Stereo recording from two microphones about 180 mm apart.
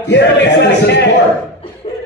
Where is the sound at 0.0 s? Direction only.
75° left (ahead or behind).